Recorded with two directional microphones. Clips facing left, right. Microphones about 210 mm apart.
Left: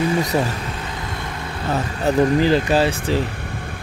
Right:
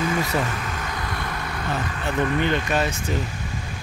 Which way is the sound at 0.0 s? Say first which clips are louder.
Left 4 dB; 25° left (ahead or behind).